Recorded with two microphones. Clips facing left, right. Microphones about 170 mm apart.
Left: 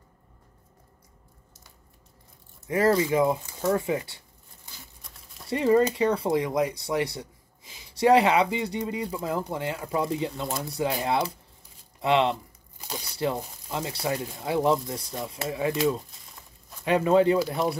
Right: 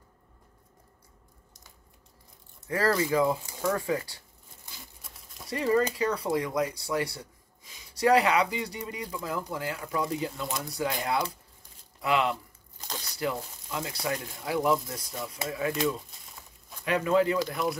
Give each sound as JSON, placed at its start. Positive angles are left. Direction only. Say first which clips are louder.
{"t": 2.7, "sound": "speech", "louder": "left 4 dB", "side_deg": 20}
{"t": 5.0, "sound": "a sound", "louder": "even", "side_deg": -5}
{"t": 5.5, "sound": "speech", "louder": "left 5 dB", "side_deg": 25}
{"t": 12.7, "sound": "crumpling", "louder": "left 3 dB", "side_deg": 10}
{"t": 13.0, "sound": "speech", "louder": "left 3 dB", "side_deg": 30}
{"t": 16.3, "sound": "crumpling", "louder": "even", "side_deg": 0}
{"t": 16.8, "sound": "speech", "louder": "left 4 dB", "side_deg": 30}